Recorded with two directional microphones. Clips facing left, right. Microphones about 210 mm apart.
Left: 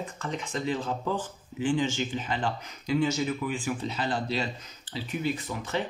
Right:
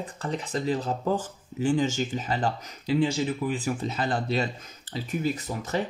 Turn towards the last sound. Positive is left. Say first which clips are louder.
# right 2 dB
turn(degrees=-40)  # may be behind; listen again after turning